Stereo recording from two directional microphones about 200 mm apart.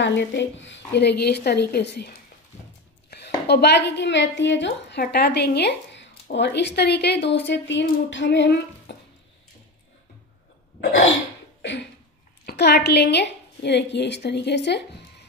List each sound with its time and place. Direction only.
0.0 s a woman's voice: 65° left (ahead or behind)
12.4 s a woman's voice: 55° left (ahead or behind)